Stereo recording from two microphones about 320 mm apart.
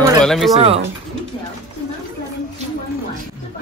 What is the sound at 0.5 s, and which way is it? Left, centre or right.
Speech, centre.